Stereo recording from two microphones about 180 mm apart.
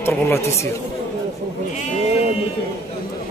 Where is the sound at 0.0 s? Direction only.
15° left (ahead or behind).